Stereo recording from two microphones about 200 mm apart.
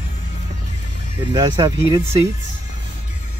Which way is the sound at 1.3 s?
20° right (ahead or behind).